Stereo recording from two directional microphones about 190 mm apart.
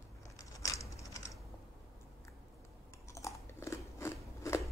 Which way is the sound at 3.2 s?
15° left (ahead or behind).